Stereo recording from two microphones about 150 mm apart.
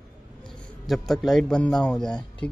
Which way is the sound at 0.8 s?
Centre (ahead or behind).